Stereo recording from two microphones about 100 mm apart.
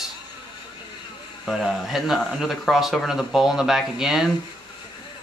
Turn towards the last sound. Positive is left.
turn(degrees=-5)  # may be behind; listen again after turning